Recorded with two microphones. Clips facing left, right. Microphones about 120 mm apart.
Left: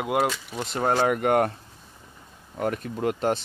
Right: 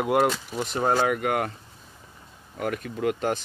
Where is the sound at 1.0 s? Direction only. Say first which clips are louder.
Left 3 dB; 40° left (ahead or behind).